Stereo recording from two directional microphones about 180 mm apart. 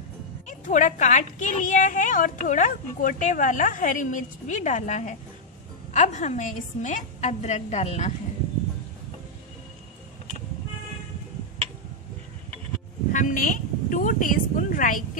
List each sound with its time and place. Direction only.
0.5 s a woman's voice: 45° left (ahead or behind)
13.1 s a woman's voice: 45° left (ahead or behind)